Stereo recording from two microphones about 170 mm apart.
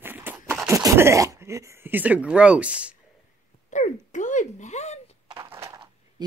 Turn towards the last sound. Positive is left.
turn(degrees=-20)  # may be behind; listen again after turning